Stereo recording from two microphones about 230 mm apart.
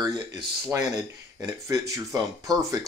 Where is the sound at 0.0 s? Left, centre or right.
Centre.